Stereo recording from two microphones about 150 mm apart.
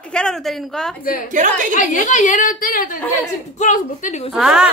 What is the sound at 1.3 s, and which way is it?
Speech, 50° right (ahead or behind).